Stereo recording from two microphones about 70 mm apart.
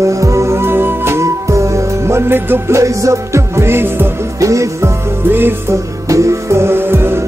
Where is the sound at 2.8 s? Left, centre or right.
Right.